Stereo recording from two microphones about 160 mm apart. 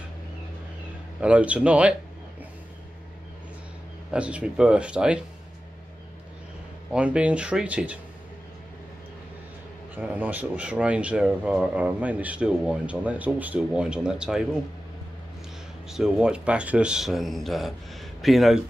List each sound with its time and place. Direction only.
1.2 s speech: 10° right (ahead or behind)
4.1 s speech: 5° right (ahead or behind)
6.9 s speech: 5° right (ahead or behind)
9.9 s speech: 10° right (ahead or behind)
15.9 s speech: 5° right (ahead or behind)